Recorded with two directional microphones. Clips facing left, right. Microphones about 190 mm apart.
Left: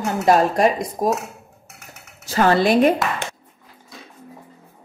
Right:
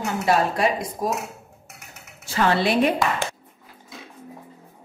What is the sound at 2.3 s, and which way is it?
Speech, 40° left (ahead or behind).